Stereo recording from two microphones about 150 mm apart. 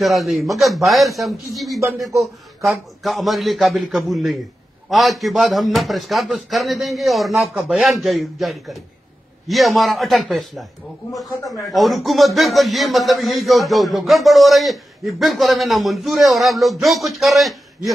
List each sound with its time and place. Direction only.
0.0 s a man's voice: centre (ahead or behind)
1.8 s speech: 20° right (ahead or behind)
2.0 s a man's voice: centre (ahead or behind)
11.7 s a man's voice: centre (ahead or behind)